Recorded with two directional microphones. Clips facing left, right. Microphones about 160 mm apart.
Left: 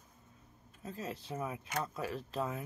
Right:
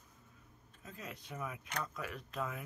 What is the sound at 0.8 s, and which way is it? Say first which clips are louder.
Speech: left 7 dB; 30° left (ahead or behind).